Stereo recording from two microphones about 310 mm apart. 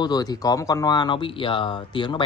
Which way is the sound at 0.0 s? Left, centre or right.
Centre.